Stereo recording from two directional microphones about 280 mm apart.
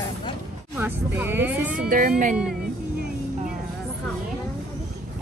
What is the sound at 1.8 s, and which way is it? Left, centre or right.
Speech, right.